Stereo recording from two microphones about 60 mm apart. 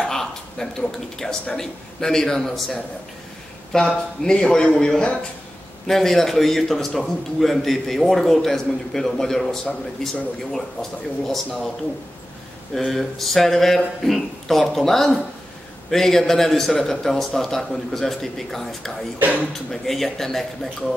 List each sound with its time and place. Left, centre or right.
0.0 s a man's voice: centre
12.7 s a man's voice: centre
19.1 s speech: right
19.7 s a man's voice: centre